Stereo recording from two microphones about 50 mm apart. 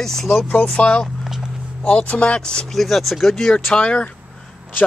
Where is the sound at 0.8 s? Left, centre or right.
Left.